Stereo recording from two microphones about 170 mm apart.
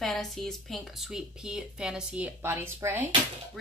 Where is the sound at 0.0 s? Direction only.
Centre (ahead or behind); by 3.1 s 15° right (ahead or behind).